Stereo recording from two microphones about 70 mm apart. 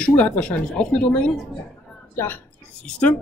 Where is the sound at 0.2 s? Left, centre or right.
Centre.